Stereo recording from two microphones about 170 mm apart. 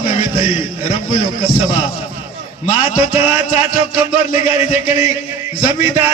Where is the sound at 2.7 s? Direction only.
35° left (ahead or behind).